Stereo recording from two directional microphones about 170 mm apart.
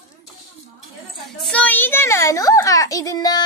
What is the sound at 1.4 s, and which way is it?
A child's voice, 10° left (ahead or behind).